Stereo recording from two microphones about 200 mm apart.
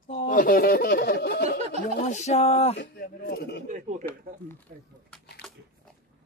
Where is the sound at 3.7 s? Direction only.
40° right (ahead or behind).